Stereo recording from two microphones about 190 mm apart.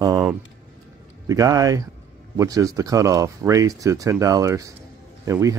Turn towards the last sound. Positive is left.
turn(degrees=-15)  # may be behind; listen again after turning